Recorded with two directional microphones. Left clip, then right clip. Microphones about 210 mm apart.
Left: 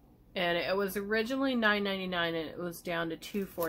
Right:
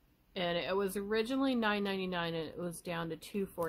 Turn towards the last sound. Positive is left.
turn(degrees=-40)  # may be behind; listen again after turning